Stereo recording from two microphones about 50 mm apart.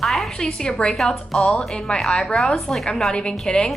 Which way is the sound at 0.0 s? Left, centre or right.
Centre.